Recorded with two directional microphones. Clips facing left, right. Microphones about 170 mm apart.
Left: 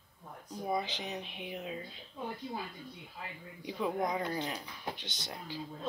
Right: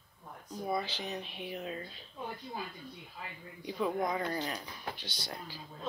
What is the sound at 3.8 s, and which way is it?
Speech, 20° left (ahead or behind).